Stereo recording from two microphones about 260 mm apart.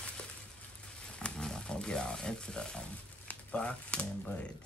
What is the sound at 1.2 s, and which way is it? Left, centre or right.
Speech, centre.